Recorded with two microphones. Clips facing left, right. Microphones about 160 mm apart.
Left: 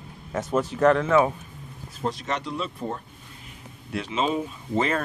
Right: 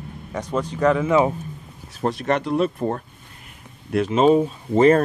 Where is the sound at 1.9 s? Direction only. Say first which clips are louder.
Right 7 dB; 60° right (ahead or behind).